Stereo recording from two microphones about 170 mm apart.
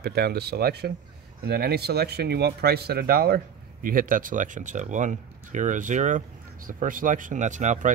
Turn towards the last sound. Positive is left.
turn(degrees=-45)  # may be behind; listen again after turning